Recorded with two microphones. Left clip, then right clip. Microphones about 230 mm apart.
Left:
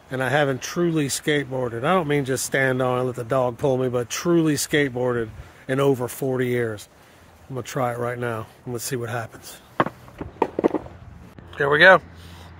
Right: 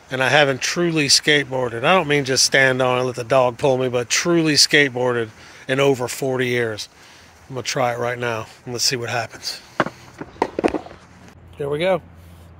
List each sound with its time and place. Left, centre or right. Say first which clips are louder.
0.1 s speech: right 6 dB; centre
9.8 s walk: even; right
11.5 s speech: left 7 dB; centre